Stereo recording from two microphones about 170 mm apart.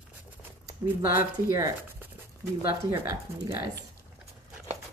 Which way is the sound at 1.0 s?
55° left (ahead or behind).